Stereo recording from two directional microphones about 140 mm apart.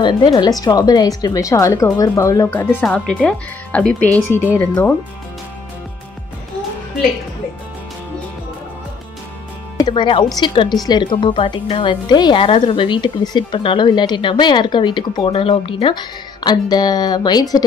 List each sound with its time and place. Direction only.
0.0 s speech: 30° left (ahead or behind); by 4.9 s 10° left (ahead or behind)
9.8 s a woman's voice: 30° left (ahead or behind)